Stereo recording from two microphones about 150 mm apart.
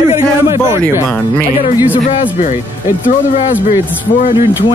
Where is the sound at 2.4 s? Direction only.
60° left (ahead or behind).